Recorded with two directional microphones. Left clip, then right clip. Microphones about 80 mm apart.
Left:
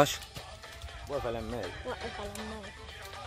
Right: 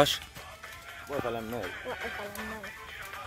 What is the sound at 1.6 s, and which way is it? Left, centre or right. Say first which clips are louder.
Speech: right 2 dB; left.